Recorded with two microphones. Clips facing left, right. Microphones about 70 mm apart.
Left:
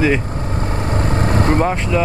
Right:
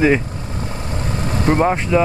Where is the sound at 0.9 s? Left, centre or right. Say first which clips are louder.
Left 5 dB; left.